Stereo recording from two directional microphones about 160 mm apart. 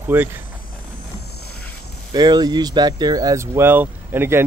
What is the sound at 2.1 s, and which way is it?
Speech, 25° right (ahead or behind).